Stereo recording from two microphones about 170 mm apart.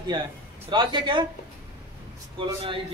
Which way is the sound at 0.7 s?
30° right (ahead or behind).